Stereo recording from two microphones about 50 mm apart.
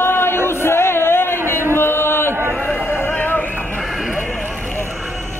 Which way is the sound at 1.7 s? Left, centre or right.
Left.